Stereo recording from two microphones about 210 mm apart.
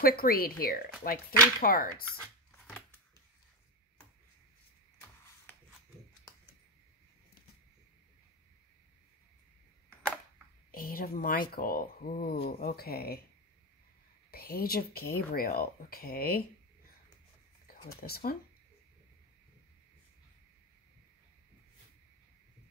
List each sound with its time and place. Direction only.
0.0 s speech: 45° left (ahead or behind)
10.7 s speech: 45° left (ahead or behind)
14.3 s speech: 45° left (ahead or behind)
17.6 s speech: 45° left (ahead or behind)